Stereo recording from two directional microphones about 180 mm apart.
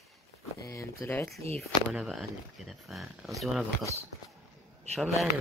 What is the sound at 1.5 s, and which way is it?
Speech, centre (ahead or behind).